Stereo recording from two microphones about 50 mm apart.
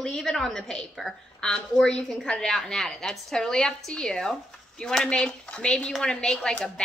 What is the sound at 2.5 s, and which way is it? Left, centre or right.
Speech, centre.